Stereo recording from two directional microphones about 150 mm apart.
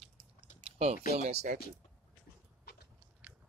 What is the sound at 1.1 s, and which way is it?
Speech, 45° right (ahead or behind).